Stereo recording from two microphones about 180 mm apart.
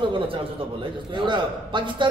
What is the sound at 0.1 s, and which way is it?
A man's voice, 30° right (ahead or behind).